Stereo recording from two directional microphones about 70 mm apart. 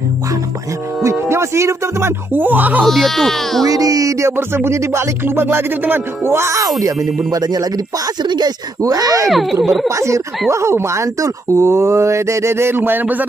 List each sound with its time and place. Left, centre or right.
1.0 s music: right
2.3 s speech: right
2.8 s speech: centre
3.6 s music: right
4.4 s music: right
6.8 s speech: right
8.2 s speech: right
9.3 s speech: centre
9.8 s speech: right